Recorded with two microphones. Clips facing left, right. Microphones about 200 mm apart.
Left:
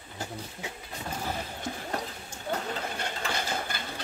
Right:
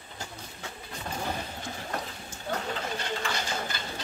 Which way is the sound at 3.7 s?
55° left (ahead or behind).